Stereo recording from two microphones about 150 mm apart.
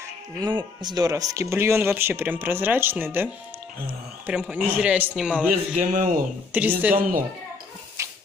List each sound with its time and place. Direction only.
0.4 s speech: 30° right (ahead or behind); by 5.5 s 5° right (ahead or behind)
5.5 s a man's voice: 65° right (ahead or behind)
6.5 s speech: 10° right (ahead or behind)
7.0 s a woman's voice: 65° right (ahead or behind)
8.0 s dog: 20° right (ahead or behind)